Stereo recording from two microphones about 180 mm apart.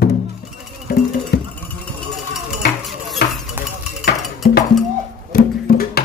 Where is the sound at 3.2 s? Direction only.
60° left (ahead or behind).